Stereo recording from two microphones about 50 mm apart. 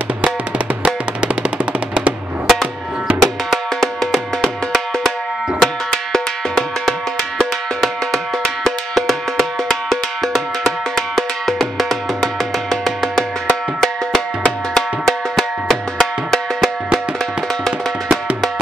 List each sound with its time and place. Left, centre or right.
0.8 s drum: right
2.4 s music: centre
3.1 s drum: right
3.8 s music: centre